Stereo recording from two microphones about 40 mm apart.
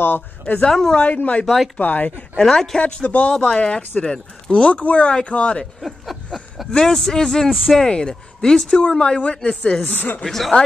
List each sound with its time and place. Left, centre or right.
0.0 s speech: left
0.7 s speech: centre
1.0 s speech: left
2.4 s speech: centre
2.8 s speech: left
5.8 s a sound: centre
6.7 s speech: centre
7.4 s speech: centre
7.8 s speech: left
9.8 s speech: left
10.2 s speech: centre